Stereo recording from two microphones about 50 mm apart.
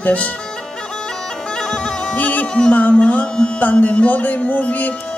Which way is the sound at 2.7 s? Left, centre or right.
Left.